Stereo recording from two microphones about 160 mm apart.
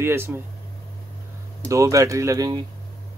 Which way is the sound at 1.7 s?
20° right (ahead or behind).